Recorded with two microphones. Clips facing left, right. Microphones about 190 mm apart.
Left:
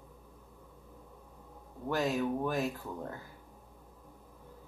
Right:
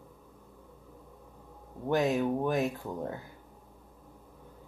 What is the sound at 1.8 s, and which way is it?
Speech, 20° right (ahead or behind).